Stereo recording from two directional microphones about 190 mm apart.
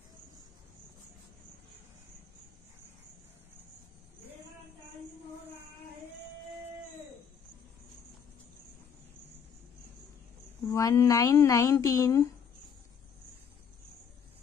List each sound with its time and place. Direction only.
10.7 s speech: 15° left (ahead or behind)